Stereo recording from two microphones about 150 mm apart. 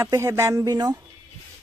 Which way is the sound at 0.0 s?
20° right (ahead or behind).